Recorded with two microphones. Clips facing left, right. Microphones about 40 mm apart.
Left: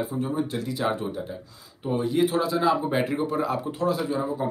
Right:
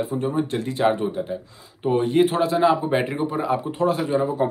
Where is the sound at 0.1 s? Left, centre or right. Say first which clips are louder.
Right 4 dB; right.